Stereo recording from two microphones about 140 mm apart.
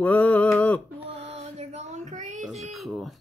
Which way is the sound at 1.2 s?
50° right (ahead or behind).